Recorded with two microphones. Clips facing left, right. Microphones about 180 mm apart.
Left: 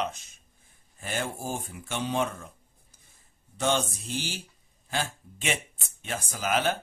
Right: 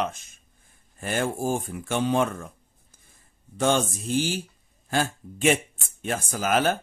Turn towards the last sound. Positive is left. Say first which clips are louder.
# right 4 dB
turn(degrees=-45)  # may be behind; listen again after turning